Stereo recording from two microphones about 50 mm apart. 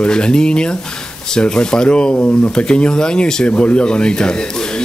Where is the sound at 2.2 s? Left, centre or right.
Left.